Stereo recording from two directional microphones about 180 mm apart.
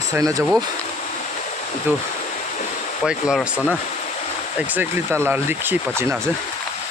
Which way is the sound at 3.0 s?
5° right (ahead or behind).